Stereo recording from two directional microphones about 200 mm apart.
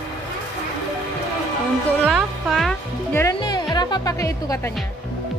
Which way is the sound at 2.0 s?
Centre (ahead or behind).